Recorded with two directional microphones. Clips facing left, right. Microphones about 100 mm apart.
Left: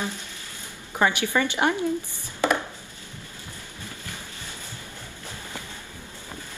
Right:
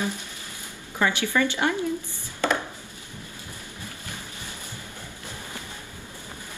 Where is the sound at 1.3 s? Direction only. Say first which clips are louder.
Right 2 dB; 45° left (ahead or behind).